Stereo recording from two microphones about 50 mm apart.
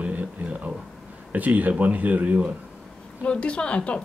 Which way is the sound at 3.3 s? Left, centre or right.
Left.